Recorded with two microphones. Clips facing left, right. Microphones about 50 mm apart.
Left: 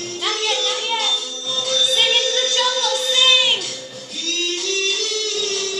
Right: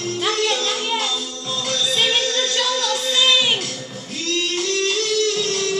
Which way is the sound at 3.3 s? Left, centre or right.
Centre.